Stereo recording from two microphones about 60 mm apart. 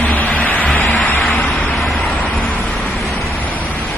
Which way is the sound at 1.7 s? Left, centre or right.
Centre.